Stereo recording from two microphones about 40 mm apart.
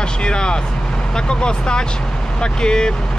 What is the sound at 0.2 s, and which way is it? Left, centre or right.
Vehicle, left.